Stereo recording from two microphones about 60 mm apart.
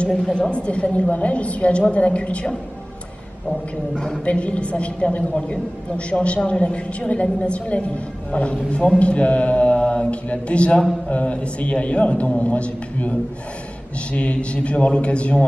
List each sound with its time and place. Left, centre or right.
0.3 s a man's voice: centre
3.9 s a man's voice: centre
14.1 s a man's voice: left